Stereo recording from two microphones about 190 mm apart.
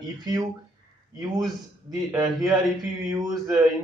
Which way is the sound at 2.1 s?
20° right (ahead or behind).